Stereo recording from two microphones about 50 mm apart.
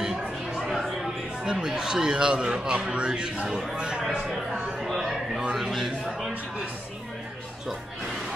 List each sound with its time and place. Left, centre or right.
0.2 s chatter: centre
0.7 s chatter: centre
1.4 s a man's voice: centre
3.4 s speech: centre
3.7 s a man's voice: centre
5.4 s a man's voice: centre